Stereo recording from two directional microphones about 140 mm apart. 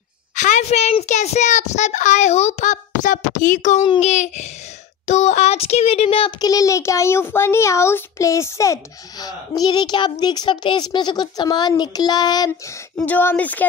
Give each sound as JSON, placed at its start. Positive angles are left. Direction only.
{"t": 0.4, "sound": "a child's voice", "side_deg": 60}
{"t": 4.0, "sound": "a sound", "side_deg": 55}
{"t": 6.4, "sound": "a child's voice", "side_deg": 25}
{"t": 13.0, "sound": "speech", "side_deg": 15}